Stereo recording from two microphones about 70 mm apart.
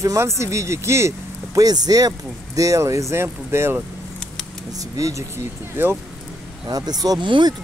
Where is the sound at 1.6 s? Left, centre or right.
Right.